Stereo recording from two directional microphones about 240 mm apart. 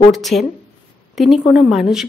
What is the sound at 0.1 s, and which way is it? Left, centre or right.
A woman's voice, centre.